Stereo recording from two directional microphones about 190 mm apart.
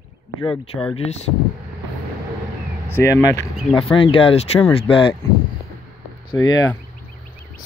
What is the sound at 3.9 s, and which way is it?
Speech, 30° left (ahead or behind).